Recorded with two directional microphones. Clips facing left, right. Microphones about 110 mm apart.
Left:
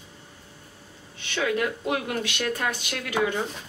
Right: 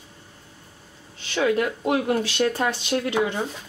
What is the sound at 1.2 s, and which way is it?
Speech, 30° right (ahead or behind).